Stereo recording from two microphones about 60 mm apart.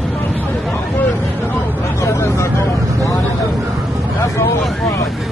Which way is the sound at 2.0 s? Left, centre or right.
Left.